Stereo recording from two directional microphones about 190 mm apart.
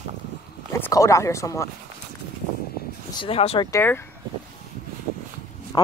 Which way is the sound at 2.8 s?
55° left (ahead or behind).